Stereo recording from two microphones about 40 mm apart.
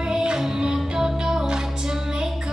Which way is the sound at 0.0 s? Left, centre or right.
Centre.